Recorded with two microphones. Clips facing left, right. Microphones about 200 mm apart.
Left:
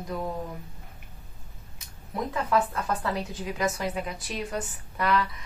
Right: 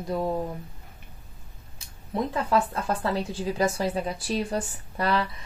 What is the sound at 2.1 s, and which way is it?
Speech, 25° right (ahead or behind).